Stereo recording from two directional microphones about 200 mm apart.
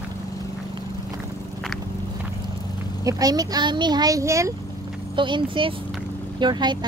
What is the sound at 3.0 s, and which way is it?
A child's voice, 20° right (ahead or behind).